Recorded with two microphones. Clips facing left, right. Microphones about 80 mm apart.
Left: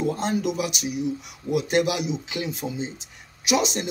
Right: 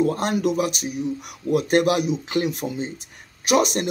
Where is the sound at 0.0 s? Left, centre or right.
Right.